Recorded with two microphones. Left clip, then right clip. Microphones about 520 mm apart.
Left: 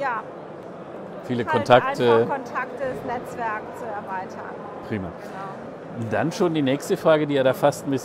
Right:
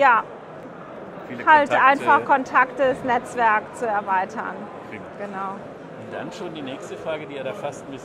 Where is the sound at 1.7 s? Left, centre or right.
Left.